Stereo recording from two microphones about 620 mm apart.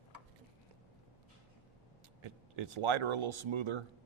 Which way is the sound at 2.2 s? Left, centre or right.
Right.